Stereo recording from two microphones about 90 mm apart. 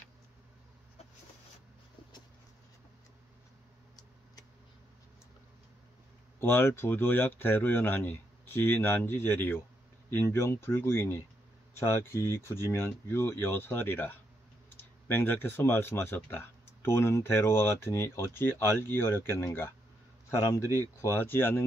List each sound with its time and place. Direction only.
6.4 s speech: 25° left (ahead or behind)
21.0 s speech: 30° left (ahead or behind)